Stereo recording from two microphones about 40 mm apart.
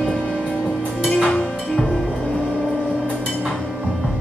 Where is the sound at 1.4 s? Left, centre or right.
Left.